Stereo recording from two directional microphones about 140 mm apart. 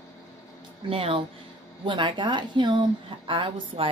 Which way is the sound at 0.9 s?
40° right (ahead or behind).